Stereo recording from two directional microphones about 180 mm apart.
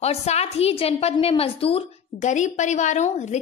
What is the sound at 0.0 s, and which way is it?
Speech, 35° left (ahead or behind).